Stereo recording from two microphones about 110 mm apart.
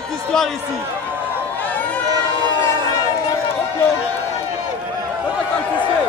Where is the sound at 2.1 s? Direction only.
40° right (ahead or behind).